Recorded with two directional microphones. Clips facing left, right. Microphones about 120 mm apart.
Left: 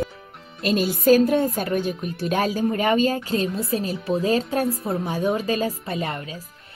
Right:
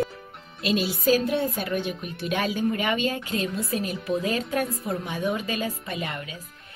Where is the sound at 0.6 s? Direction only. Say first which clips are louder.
Left 4 dB; 45° left (ahead or behind).